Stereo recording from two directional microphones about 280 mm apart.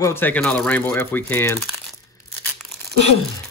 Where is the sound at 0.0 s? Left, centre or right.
Centre.